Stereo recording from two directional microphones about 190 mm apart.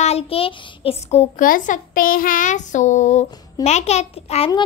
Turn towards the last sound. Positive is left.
turn(degrees=30)  # may be behind; listen again after turning